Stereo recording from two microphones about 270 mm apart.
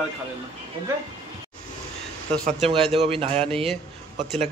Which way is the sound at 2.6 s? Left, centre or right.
Centre.